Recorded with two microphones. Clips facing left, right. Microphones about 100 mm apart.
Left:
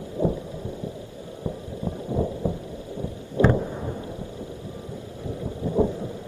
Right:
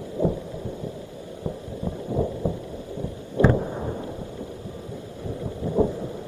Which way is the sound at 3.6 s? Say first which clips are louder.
Right 1 dB; 20° right (ahead or behind).